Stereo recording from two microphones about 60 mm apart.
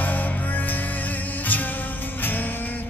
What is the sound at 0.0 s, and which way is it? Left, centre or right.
Music, left.